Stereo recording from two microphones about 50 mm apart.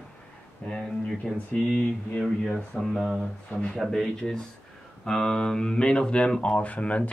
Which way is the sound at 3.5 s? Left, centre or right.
Left.